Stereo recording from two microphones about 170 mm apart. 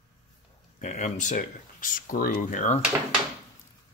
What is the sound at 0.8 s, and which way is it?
Speech, 45° left (ahead or behind).